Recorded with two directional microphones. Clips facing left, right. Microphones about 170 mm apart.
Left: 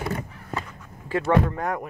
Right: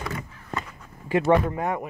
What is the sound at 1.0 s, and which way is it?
Speech, 15° right (ahead or behind).